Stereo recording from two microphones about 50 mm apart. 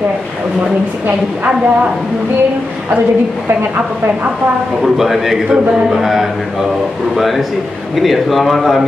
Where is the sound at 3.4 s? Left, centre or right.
Right.